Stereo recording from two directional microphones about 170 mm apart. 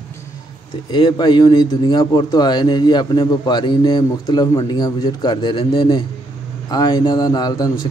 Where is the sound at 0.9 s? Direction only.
25° left (ahead or behind).